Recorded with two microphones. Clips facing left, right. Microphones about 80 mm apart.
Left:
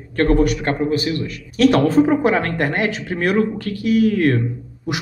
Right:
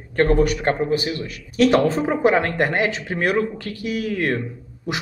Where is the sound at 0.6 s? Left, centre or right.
Right.